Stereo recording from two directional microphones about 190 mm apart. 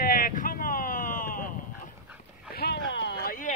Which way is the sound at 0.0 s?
45° left (ahead or behind).